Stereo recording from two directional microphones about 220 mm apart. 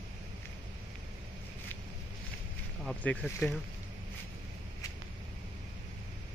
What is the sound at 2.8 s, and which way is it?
Speech, 5° left (ahead or behind).